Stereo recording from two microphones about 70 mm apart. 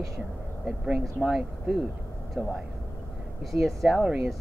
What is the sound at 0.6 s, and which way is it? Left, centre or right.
Speech, centre.